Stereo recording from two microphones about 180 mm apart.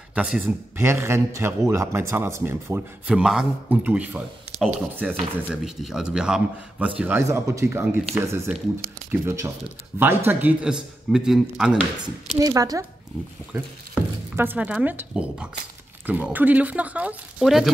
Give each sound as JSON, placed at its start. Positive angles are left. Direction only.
{"t": 0.1, "sound": "a man's voice", "side_deg": -5}
{"t": 12.4, "sound": "a man's voice", "side_deg": -20}